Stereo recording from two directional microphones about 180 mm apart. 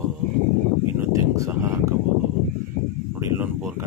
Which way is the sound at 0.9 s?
15° right (ahead or behind).